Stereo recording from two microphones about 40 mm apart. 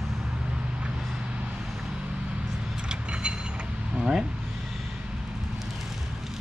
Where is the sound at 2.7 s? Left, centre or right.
Right.